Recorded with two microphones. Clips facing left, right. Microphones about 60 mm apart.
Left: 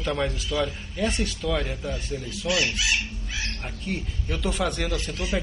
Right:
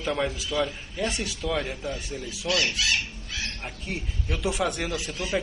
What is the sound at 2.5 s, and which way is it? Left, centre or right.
Speech, centre.